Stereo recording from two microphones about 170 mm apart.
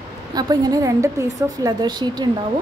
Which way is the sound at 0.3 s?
25° right (ahead or behind).